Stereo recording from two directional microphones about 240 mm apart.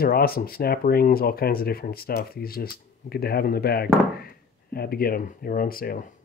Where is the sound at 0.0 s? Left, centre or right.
Left.